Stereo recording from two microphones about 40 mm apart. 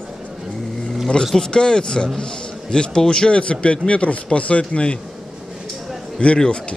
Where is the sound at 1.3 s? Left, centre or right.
Centre.